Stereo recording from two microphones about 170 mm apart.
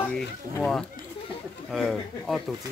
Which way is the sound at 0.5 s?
5° left (ahead or behind).